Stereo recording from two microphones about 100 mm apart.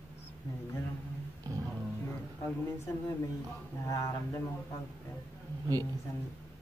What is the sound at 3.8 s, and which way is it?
Speech, 35° left (ahead or behind).